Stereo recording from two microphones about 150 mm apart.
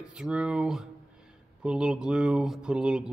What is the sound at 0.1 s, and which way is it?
Speech, 5° right (ahead or behind).